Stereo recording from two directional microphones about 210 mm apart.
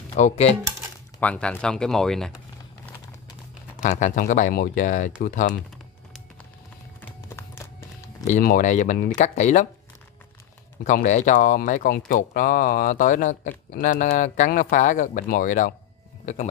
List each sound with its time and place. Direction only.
0.1 s speech: 30° left (ahead or behind)
1.2 s speech: 5° left (ahead or behind)
3.8 s speech: 35° left (ahead or behind)
7.0 s a sound: 10° left (ahead or behind)
8.3 s speech: 40° left (ahead or behind)
10.8 s speech: 35° left (ahead or behind)